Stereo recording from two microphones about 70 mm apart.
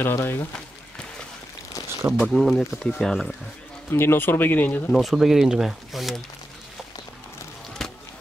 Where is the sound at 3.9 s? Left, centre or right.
Left.